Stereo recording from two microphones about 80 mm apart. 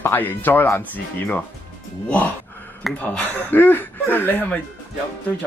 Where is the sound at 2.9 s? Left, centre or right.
Left.